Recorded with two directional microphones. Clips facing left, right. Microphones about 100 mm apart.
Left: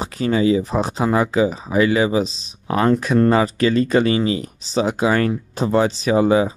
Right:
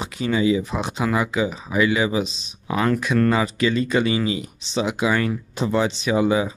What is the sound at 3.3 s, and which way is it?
Speech, 40° left (ahead or behind).